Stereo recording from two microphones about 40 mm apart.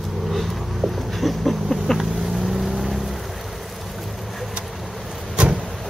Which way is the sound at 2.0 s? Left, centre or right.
Centre.